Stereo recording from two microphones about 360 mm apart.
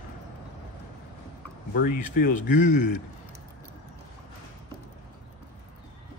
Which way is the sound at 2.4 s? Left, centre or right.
Left.